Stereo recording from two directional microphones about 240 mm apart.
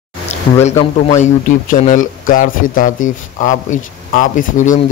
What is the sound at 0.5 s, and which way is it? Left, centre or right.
A man's voice, left.